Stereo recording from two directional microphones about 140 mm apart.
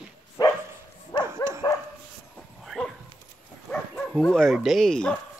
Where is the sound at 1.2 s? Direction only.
20° right (ahead or behind).